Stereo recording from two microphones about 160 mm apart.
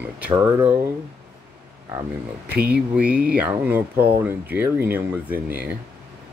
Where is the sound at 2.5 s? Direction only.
75° right (ahead or behind).